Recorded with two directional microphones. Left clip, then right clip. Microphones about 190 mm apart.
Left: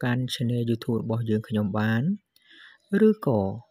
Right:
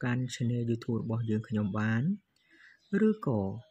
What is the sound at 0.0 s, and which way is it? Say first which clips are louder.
Speech: left 6 dB; 35° left (ahead or behind).